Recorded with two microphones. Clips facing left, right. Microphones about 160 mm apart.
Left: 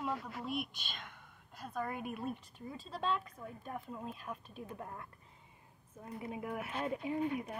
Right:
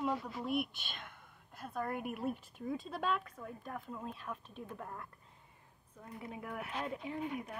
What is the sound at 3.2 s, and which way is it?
Speech, 15° left (ahead or behind).